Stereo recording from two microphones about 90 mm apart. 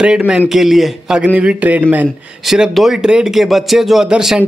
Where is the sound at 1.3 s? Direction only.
15° right (ahead or behind).